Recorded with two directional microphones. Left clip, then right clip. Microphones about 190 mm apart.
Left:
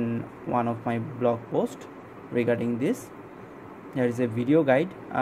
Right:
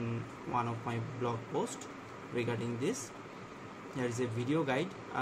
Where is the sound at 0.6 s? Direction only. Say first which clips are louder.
Left 8 dB; 40° left (ahead or behind).